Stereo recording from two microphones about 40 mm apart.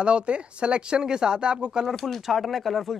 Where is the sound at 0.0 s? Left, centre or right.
Right.